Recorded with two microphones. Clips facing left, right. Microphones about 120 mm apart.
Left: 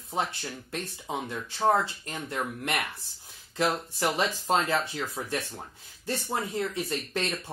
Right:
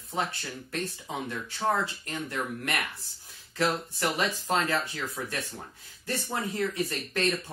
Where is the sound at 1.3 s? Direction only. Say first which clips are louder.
Left 4 dB; 20° left (ahead or behind).